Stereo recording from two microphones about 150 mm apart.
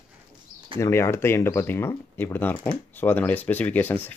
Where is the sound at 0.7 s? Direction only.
20° left (ahead or behind).